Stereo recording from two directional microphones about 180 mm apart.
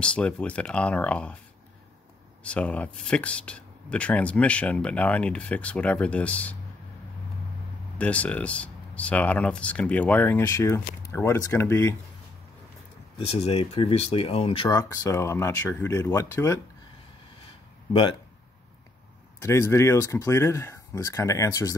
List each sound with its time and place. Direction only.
0.0 s speech: 5° left (ahead or behind)
2.4 s speech: 5° left (ahead or behind)
8.0 s speech: 10° left (ahead or behind)
13.3 s speech: 35° left (ahead or behind)
14.7 s speech: 15° left (ahead or behind)
19.4 s speech: 15° left (ahead or behind)